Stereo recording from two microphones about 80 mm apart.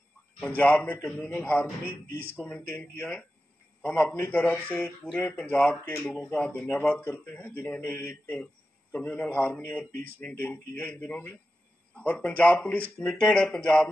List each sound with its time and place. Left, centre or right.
0.6 s speech: left
2.3 s speech: centre
2.7 s speech: left
6.0 s speech: centre
6.3 s speech: centre
8.9 s speech: centre